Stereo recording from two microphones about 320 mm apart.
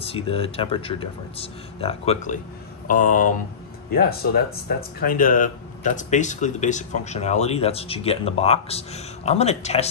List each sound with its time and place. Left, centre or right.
0.0 s speech: centre